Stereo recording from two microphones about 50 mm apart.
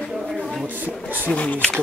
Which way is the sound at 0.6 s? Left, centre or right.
Right.